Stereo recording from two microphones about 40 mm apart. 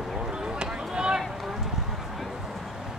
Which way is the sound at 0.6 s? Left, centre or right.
Right.